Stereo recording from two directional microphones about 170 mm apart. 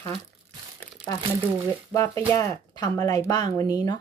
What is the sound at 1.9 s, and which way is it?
Speech, 20° left (ahead or behind).